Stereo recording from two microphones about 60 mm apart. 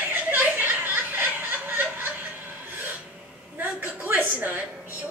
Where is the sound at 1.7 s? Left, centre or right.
Right.